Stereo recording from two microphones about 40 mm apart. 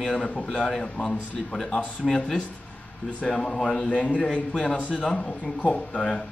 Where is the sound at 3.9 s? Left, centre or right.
Left.